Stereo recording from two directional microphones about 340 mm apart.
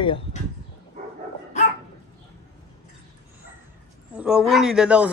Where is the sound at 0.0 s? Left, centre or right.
Centre.